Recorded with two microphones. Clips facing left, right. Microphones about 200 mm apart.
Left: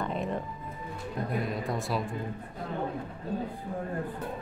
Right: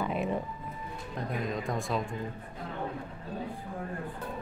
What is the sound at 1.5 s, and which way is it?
Speech, 5° left (ahead or behind).